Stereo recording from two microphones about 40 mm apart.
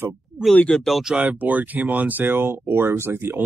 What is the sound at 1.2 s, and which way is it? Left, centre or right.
Speech, right.